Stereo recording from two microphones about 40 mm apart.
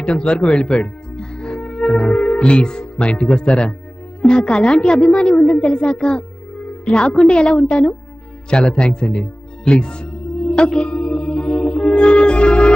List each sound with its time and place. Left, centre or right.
0.0 s speech: left
0.4 s speech: centre
1.1 s music: centre
2.2 s speech: left
5.9 s a child's voice: centre
9.7 s music: left